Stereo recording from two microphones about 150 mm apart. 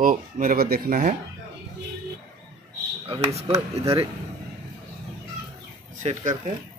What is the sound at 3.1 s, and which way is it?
Speech, 40° right (ahead or behind).